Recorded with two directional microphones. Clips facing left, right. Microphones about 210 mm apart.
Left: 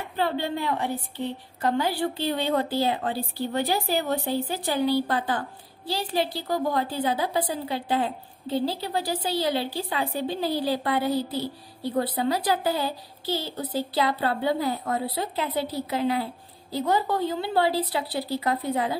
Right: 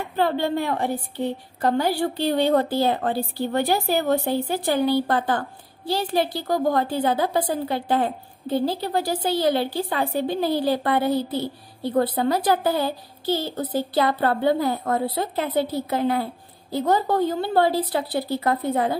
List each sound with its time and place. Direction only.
0.1 s a woman's voice: 50° right (ahead or behind)